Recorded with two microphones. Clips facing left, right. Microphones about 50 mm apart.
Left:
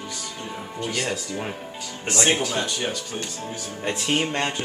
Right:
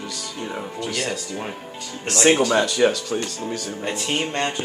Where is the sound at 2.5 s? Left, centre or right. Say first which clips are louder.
Right 8 dB; right.